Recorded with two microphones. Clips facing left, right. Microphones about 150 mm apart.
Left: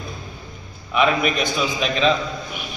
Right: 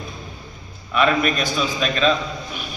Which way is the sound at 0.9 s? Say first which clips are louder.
Even; 10° left (ahead or behind).